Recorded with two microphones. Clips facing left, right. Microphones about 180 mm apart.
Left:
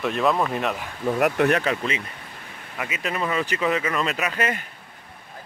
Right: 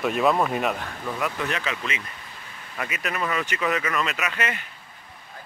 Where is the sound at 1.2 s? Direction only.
55° left (ahead or behind).